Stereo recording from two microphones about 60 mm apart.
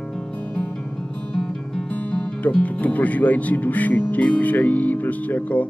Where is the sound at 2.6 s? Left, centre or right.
Left.